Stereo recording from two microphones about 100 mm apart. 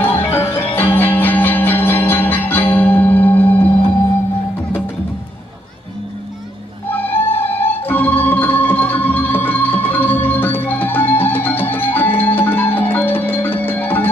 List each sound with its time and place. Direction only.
0.0 s music: 20° left (ahead or behind)
6.9 s music: 20° left (ahead or behind)